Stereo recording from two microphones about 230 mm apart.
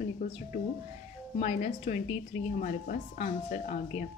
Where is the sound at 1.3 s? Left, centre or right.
Left.